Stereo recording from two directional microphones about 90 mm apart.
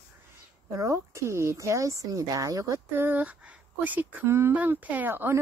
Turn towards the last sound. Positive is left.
turn(degrees=-25)  # may be behind; listen again after turning